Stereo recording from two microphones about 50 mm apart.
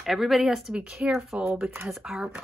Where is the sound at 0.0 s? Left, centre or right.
Centre.